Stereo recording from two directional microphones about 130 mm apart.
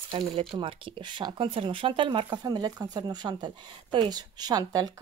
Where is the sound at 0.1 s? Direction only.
45° right (ahead or behind).